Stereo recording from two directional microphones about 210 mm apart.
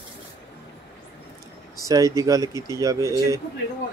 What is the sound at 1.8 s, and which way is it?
Speech, 15° right (ahead or behind).